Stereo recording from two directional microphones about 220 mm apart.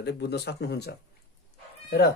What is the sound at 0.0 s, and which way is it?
Speech, 50° left (ahead or behind).